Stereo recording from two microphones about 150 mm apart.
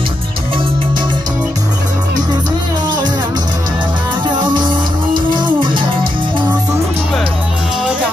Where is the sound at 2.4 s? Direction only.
30° right (ahead or behind).